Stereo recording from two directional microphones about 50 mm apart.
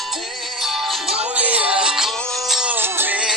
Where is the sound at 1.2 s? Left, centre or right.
Right.